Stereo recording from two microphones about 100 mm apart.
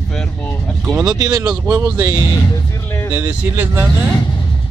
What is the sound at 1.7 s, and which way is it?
Speech, 30° right (ahead or behind).